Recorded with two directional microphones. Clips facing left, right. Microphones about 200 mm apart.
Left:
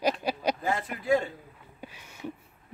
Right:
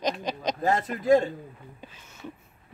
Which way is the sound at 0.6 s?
40° right (ahead or behind).